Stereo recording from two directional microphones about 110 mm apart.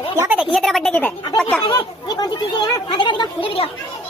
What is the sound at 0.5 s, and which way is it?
Speech, centre (ahead or behind).